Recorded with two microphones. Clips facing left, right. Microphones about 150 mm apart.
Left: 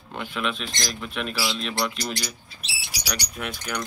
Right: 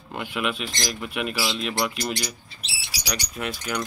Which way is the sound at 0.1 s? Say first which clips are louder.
Right 1 dB; 5° right (ahead or behind).